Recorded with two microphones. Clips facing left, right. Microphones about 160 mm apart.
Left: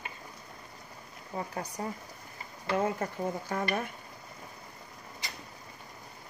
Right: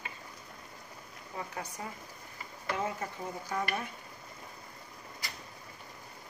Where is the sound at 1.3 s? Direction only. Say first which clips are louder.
Left 4 dB; 40° left (ahead or behind).